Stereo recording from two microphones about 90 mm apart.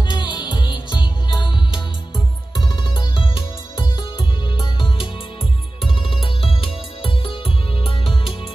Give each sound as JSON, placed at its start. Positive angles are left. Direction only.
{"t": 0.0, "sound": "music", "side_deg": 55}
{"t": 3.7, "sound": "music", "side_deg": 60}